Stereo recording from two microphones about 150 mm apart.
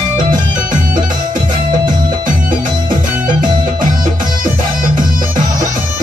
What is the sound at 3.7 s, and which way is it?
Music, 65° right (ahead or behind).